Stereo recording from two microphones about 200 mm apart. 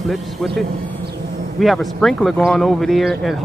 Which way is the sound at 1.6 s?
Centre (ahead or behind).